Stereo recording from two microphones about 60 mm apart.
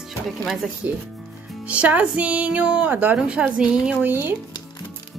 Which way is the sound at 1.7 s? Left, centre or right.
Right.